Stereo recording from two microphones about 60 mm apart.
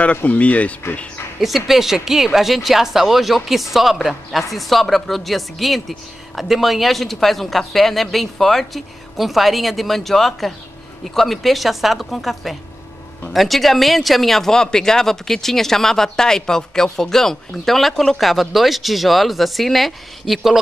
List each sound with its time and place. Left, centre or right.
0.0 s speech: left
1.4 s speech: centre